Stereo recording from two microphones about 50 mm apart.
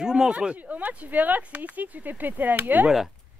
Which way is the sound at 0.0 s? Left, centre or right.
Centre.